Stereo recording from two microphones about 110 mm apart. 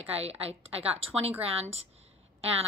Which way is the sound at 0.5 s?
60° right (ahead or behind).